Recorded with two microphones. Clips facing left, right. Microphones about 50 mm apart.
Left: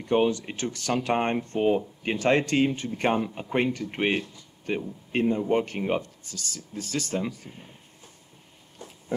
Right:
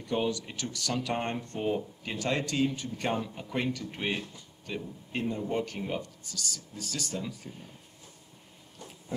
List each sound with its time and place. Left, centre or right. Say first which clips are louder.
0.0 s speech: left 7 dB; left